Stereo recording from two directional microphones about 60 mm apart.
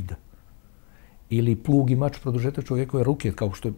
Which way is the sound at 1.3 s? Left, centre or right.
Left.